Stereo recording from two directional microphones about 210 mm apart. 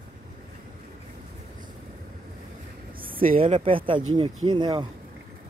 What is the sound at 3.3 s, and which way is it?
Speech, 30° right (ahead or behind).